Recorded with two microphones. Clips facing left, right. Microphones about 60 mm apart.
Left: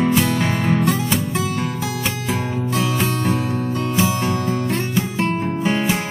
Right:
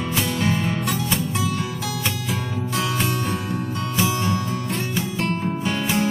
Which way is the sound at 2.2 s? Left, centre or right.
Left.